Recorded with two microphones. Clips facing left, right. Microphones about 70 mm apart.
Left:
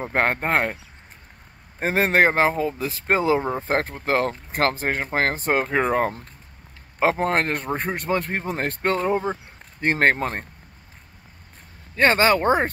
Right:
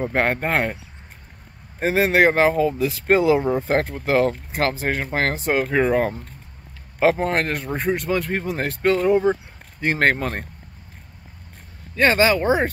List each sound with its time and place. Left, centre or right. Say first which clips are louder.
0.1 s speech: left 3 dB; left
1.8 s speech: right 2 dB; left
9.9 s speech: even; left
11.9 s speech: right 1 dB; left